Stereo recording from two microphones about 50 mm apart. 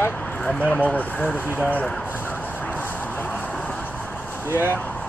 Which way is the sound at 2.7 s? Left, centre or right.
Left.